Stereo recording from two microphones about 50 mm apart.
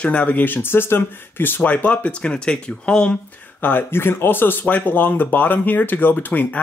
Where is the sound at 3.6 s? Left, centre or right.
Left.